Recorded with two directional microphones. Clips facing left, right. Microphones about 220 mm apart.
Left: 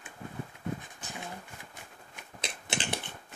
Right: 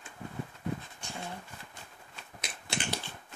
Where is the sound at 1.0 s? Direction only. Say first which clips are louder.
Even; 5° left (ahead or behind).